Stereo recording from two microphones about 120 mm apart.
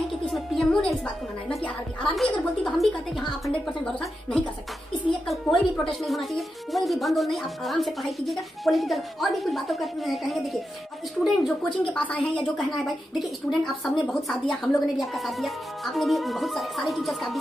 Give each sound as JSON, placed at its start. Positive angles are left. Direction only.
{"t": 0.3, "sound": "music", "side_deg": 0}
{"t": 1.5, "sound": "a woman's voice", "side_deg": 10}